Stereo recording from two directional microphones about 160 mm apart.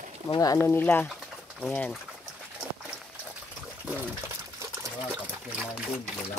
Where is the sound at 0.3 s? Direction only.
20° left (ahead or behind).